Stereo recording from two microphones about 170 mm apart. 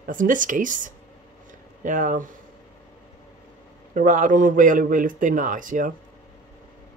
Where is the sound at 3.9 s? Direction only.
50° right (ahead or behind).